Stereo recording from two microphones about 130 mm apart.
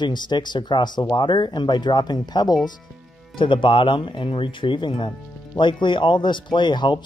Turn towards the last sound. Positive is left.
turn(degrees=35)  # may be behind; listen again after turning